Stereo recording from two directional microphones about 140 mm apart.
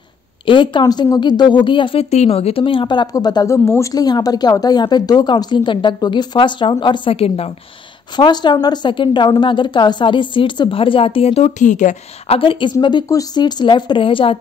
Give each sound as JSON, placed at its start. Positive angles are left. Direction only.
{"t": 0.5, "sound": "a woman's voice", "side_deg": 35}
{"t": 8.2, "sound": "a woman's voice", "side_deg": 30}
{"t": 12.4, "sound": "a woman's voice", "side_deg": 40}